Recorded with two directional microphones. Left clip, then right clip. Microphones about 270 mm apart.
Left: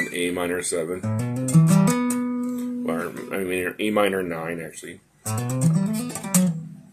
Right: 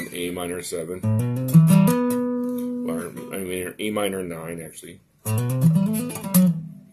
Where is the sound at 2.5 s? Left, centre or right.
Centre.